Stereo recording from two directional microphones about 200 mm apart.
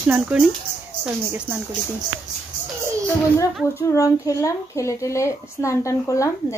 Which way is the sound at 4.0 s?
15° left (ahead or behind).